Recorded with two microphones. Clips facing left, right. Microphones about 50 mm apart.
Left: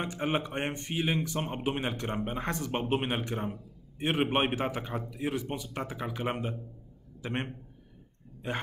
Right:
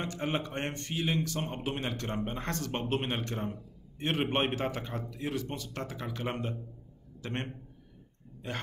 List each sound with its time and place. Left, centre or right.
0.0 s a man's voice: centre